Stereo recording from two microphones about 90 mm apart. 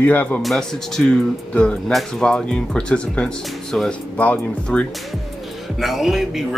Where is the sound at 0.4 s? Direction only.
5° left (ahead or behind).